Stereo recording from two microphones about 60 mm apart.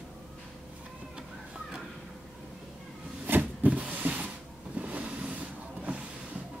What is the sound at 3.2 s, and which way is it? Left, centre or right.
Cupboard open or close, right.